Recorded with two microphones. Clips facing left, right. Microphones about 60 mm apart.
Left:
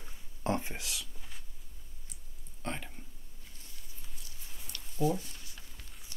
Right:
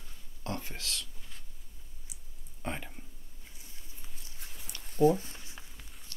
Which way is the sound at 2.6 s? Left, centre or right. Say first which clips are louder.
Right 1 dB; centre.